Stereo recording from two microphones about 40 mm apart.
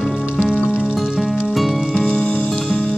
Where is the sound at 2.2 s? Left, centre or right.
Left.